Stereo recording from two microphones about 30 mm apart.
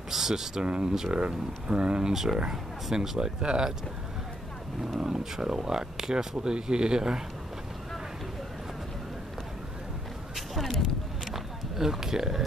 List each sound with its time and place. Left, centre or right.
0.1 s speech: centre
0.6 s speech: right
2.1 s a man's voice: centre
5.0 s speech: centre
10.3 s a sound: centre
11.3 s a sound: centre